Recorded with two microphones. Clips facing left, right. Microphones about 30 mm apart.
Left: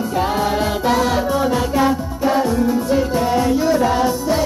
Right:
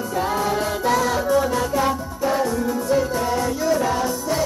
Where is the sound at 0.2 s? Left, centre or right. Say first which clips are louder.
Left 3 dB; left.